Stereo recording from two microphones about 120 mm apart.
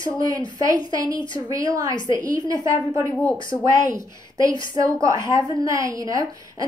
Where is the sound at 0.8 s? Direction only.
30° right (ahead or behind).